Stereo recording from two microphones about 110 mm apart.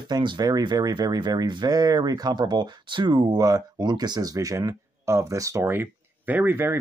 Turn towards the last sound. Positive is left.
turn(degrees=-20)  # may be behind; listen again after turning